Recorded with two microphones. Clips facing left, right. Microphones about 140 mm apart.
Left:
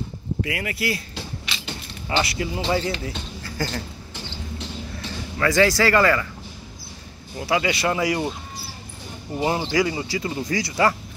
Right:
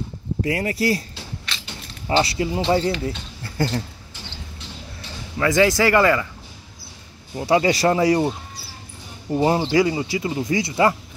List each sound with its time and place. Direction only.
0.4 s speech: 35° right (ahead or behind)
1.5 s a sound: 10° left (ahead or behind)
2.0 s speech: 30° right (ahead or behind)
3.4 s a sound: 25° right (ahead or behind)
5.4 s speech: 20° right (ahead or behind)
7.3 s speech: 30° right (ahead or behind)
9.6 s speech: 25° right (ahead or behind)